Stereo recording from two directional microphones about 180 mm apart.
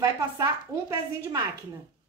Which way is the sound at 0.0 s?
20° right (ahead or behind).